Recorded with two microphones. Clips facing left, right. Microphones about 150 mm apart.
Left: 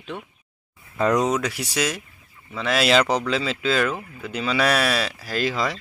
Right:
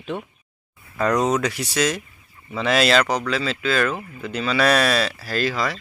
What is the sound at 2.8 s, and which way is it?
Speech, 20° left (ahead or behind).